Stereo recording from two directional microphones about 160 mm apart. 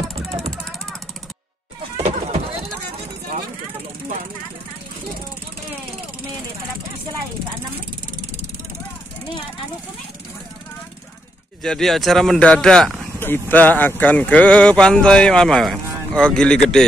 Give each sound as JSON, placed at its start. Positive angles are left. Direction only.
{"t": 0.4, "sound": "vehicle", "side_deg": 0}
{"t": 2.0, "sound": "a sound", "side_deg": -40}
{"t": 11.6, "sound": "speech", "side_deg": 5}